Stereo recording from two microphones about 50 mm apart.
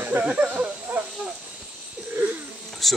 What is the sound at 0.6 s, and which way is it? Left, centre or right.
Snake, right.